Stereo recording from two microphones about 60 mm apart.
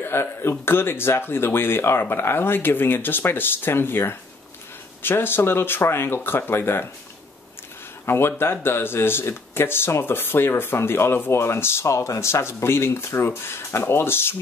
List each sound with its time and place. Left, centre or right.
0.0 s speech: left
8.0 s speech: left